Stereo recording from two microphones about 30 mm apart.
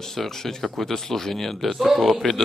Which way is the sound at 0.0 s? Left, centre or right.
Centre.